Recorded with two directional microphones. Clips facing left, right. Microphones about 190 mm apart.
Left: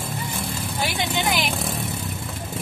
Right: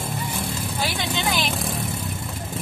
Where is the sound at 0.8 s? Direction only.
15° left (ahead or behind).